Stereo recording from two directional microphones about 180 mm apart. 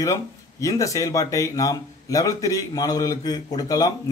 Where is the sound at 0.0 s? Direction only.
20° left (ahead or behind).